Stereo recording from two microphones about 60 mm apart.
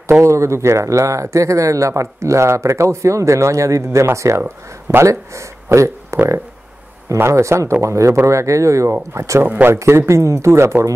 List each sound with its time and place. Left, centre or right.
0.2 s speech: right
5.3 s a sound: right
6.1 s speech: right
9.4 s speech: right
9.8 s speech: right